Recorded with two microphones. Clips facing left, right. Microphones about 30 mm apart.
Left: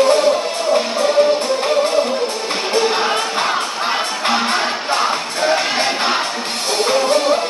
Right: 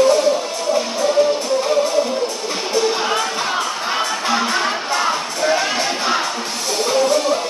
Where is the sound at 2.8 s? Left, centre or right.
Left.